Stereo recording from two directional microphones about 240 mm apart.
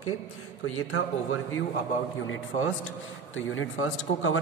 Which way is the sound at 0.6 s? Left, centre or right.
Left.